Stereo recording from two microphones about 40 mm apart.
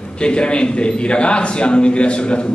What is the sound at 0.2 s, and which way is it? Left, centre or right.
A man's voice, left.